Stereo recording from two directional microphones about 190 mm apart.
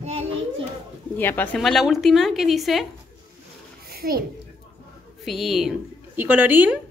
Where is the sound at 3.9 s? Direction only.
55° right (ahead or behind).